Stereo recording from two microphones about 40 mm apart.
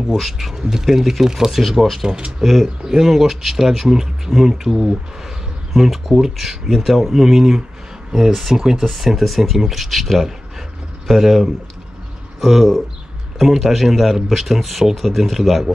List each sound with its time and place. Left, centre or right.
0.2 s speech: centre
2.0 s speech: right
2.4 s speech: centre
2.8 s speech: centre
8.8 s speech: centre